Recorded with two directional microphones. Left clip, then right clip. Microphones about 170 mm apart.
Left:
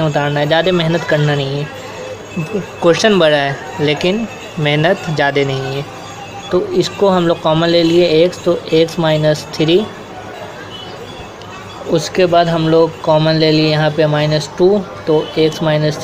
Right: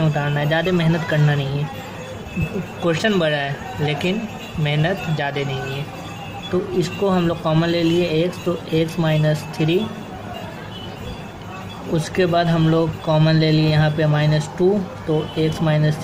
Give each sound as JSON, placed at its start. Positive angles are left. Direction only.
{"t": 0.0, "sound": "speech", "side_deg": 10}
{"t": 2.8, "sound": "speech", "side_deg": 15}
{"t": 6.5, "sound": "speech", "side_deg": 10}
{"t": 11.9, "sound": "speech", "side_deg": 10}